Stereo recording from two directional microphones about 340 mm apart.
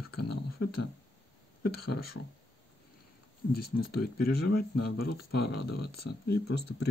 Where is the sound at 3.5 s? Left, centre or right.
Left.